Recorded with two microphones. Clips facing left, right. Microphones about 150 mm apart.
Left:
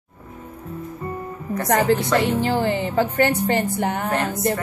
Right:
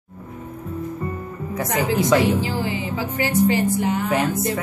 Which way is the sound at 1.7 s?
60° left (ahead or behind).